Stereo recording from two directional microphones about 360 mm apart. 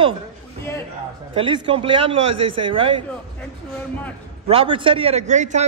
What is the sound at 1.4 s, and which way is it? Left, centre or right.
Speech, centre.